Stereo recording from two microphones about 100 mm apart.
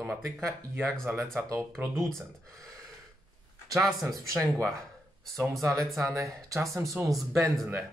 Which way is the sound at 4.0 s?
35° right (ahead or behind).